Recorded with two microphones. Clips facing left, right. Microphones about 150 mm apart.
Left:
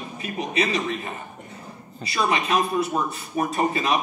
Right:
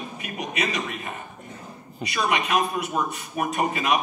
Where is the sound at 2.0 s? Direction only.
30° left (ahead or behind).